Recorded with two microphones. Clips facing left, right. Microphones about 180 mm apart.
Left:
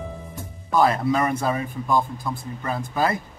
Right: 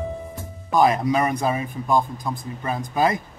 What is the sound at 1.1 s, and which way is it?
Speech, 15° right (ahead or behind).